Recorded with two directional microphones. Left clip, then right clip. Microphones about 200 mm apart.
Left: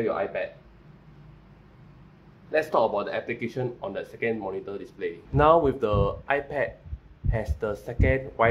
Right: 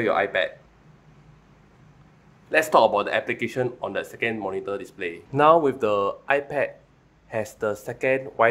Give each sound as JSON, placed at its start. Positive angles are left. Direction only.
{"t": 0.0, "sound": "speech", "side_deg": -40}
{"t": 2.5, "sound": "speech", "side_deg": -35}
{"t": 5.3, "sound": "speech", "side_deg": -15}